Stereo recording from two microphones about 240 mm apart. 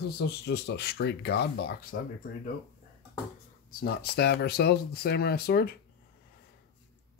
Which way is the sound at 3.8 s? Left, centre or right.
Left.